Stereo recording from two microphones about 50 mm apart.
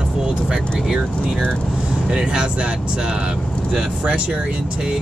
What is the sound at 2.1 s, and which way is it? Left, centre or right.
Speech, centre.